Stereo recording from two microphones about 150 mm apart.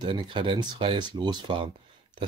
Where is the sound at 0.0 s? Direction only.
30° right (ahead or behind).